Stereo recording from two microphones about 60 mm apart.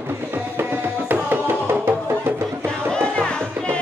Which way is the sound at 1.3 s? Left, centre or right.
Right.